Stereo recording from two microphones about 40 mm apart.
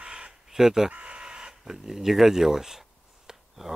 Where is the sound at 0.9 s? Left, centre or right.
Right.